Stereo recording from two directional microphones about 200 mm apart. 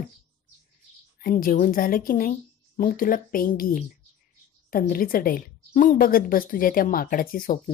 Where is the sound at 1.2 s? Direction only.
45° left (ahead or behind).